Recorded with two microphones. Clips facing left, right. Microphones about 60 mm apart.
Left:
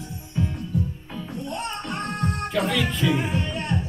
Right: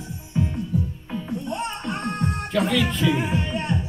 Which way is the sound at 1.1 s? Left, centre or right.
Centre.